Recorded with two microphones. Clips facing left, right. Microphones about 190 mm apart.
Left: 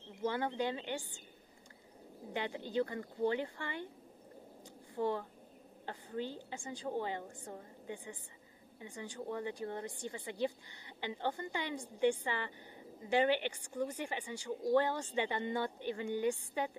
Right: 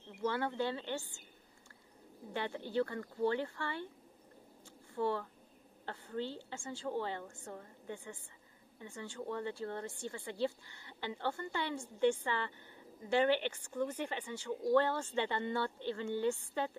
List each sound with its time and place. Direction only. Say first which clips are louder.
0.1 s a woman's voice: even; 15° left (ahead or behind)
2.3 s a woman's voice: even; 15° left (ahead or behind)
4.9 s a woman's voice: even; 15° left (ahead or behind)